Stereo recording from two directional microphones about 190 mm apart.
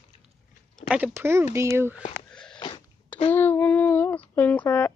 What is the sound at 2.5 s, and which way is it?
Sneeze, 25° left (ahead or behind).